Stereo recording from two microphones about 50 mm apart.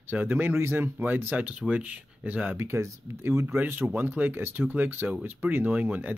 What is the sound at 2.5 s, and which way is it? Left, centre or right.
Speech, right.